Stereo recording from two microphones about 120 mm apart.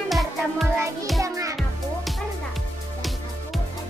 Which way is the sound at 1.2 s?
25° right (ahead or behind).